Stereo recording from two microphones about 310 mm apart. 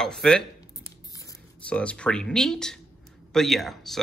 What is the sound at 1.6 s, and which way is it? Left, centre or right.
Speech, centre.